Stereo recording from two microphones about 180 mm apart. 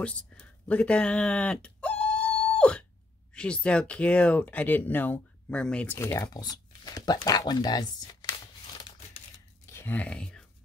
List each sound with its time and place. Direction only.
0.0 s a sound: 5° left (ahead or behind)
3.3 s speech: 5° left (ahead or behind); by 8.4 s 25° left (ahead or behind)
9.7 s speech: 10° left (ahead or behind)